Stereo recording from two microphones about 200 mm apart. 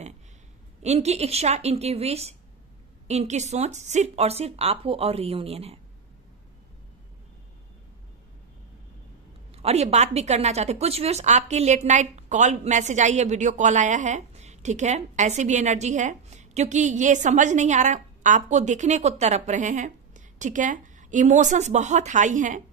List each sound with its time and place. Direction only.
0.8 s a woman's voice: 35° right (ahead or behind)
9.5 s a woman's voice: 30° right (ahead or behind)